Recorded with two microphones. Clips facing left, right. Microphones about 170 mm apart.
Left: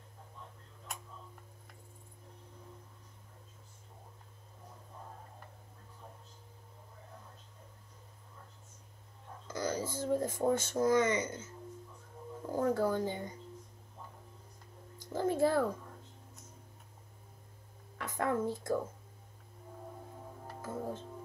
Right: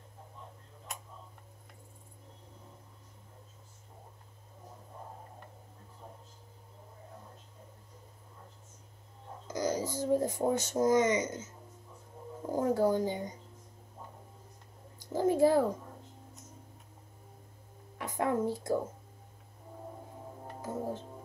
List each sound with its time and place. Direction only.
9.5 s a sound: 15° right (ahead or behind)
9.9 s speech: 15° right (ahead or behind)
12.4 s a sound: 15° right (ahead or behind)
12.9 s speech: 15° right (ahead or behind)
15.1 s speech: 15° right (ahead or behind)
17.9 s speech: 15° right (ahead or behind)
20.6 s speech: 15° right (ahead or behind)